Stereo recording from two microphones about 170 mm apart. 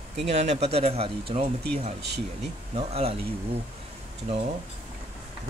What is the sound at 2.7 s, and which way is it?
Speech, 35° right (ahead or behind).